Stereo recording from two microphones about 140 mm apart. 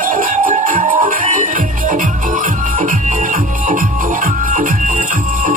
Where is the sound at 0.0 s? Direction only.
75° right (ahead or behind).